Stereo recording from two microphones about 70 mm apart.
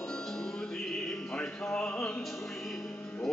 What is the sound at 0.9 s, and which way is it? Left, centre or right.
Music, centre.